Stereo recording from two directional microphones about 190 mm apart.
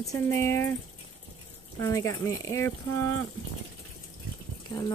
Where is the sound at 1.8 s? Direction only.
15° left (ahead or behind).